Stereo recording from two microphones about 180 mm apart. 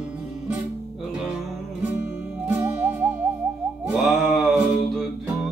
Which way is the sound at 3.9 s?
Centre (ahead or behind).